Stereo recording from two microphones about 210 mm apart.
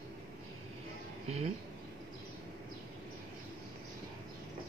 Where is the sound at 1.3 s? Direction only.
30° right (ahead or behind).